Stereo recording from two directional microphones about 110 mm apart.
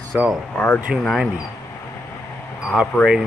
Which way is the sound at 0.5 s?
15° left (ahead or behind).